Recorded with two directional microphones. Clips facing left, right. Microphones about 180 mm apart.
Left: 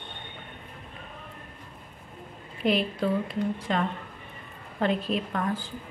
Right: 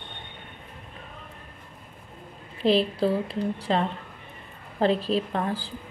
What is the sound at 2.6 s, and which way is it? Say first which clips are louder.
Speech: right 4 dB; 30° right (ahead or behind).